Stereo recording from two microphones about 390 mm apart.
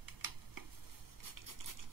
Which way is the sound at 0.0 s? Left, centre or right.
Right.